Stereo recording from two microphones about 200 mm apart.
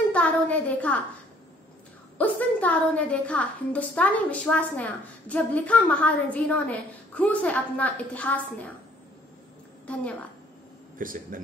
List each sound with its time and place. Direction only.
0.1 s a woman's voice: 5° left (ahead or behind)
2.1 s a woman's voice: 10° left (ahead or behind)
9.9 s a woman's voice: 5° left (ahead or behind)
11.0 s a man's voice: 45° right (ahead or behind)